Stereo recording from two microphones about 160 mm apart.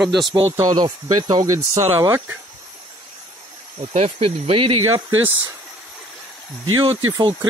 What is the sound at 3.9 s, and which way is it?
Speech, 40° right (ahead or behind).